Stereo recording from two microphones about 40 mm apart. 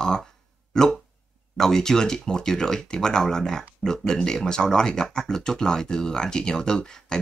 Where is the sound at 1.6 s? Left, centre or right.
Centre.